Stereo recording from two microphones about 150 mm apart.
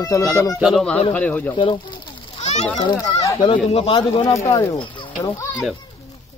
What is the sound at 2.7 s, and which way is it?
Speech, 25° left (ahead or behind).